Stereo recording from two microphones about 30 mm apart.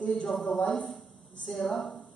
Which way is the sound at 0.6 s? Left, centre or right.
Left.